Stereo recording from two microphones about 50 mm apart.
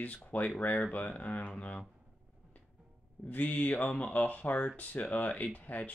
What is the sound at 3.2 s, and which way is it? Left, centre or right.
Speech, left.